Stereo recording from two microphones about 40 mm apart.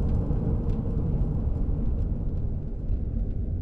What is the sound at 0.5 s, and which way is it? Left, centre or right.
Vehicle, centre.